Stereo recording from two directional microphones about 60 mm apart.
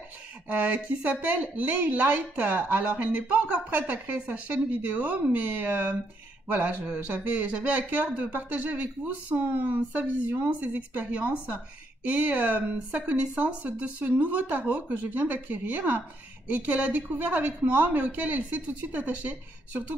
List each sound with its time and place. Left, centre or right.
0.5 s speech: right